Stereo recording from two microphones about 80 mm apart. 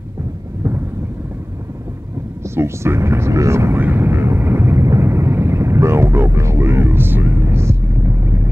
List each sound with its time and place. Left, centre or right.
2.5 s speech: right
3.8 s vehicle: right